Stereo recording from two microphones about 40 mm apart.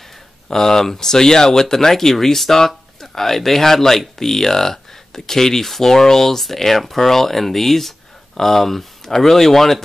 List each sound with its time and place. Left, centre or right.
0.5 s speech: centre